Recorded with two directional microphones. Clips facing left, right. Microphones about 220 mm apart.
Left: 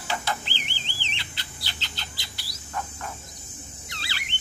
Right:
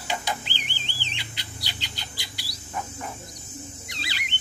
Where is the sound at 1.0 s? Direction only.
15° right (ahead or behind).